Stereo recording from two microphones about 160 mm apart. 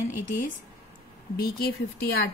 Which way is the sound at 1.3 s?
70° left (ahead or behind).